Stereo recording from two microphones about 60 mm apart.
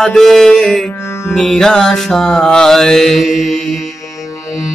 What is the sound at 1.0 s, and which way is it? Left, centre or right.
Music, left.